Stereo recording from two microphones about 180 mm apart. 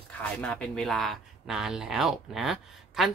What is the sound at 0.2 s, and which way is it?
Speech, 5° left (ahead or behind).